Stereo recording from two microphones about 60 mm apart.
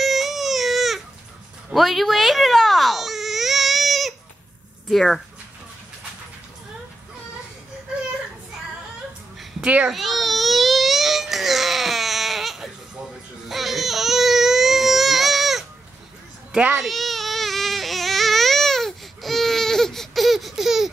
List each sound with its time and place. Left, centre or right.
0.0 s baby cry: centre
9.6 s a sound: right
9.8 s baby cry: centre
16.5 s a child's voice: right
16.8 s baby cry: centre